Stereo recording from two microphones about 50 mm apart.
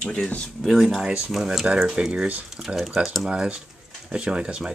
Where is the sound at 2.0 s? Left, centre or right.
Right.